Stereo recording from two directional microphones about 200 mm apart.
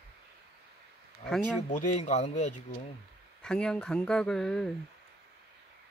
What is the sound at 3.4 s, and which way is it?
Speech, 5° left (ahead or behind).